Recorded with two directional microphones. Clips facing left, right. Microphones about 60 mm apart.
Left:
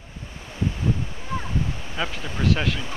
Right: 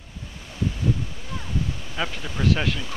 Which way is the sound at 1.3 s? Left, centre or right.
Left.